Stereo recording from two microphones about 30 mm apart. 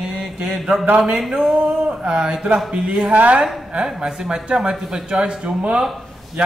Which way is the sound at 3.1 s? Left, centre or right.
Right.